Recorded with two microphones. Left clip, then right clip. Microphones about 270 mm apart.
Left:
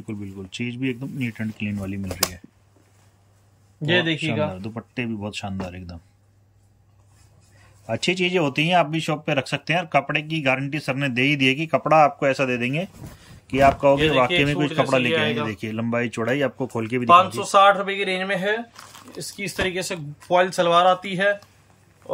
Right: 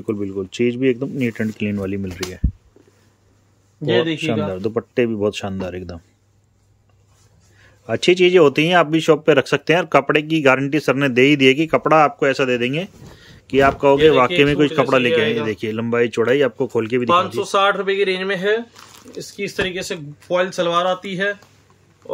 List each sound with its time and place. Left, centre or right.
0.0 s speech: centre
2.2 s speech: left
3.8 s speech: centre
4.6 s speech: centre
7.8 s speech: centre
22.0 s a sound: centre